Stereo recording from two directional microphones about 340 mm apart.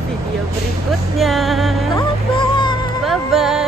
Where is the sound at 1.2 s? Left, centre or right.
Centre.